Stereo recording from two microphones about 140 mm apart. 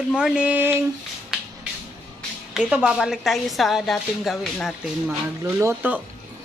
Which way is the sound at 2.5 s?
5° right (ahead or behind).